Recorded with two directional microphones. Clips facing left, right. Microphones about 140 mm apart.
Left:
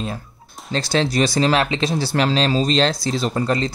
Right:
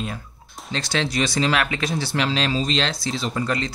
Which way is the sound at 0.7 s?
35° left (ahead or behind).